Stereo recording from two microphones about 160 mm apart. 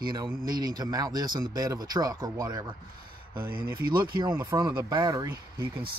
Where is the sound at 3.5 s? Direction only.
70° right (ahead or behind).